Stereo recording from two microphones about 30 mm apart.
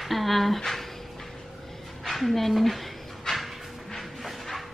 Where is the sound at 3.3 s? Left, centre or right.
Left.